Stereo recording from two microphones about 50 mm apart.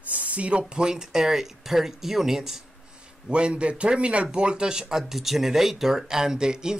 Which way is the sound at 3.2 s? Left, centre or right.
Right.